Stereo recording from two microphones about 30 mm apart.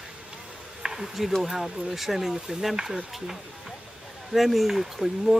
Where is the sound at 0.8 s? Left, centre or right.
Centre.